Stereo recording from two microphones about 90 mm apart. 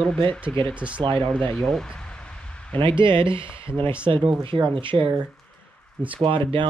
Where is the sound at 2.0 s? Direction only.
10° left (ahead or behind).